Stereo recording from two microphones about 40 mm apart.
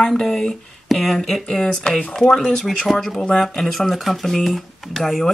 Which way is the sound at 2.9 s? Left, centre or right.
Centre.